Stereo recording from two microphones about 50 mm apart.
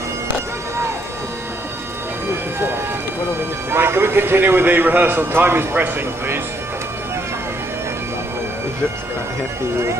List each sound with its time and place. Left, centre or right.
3.7 s a man's voice: right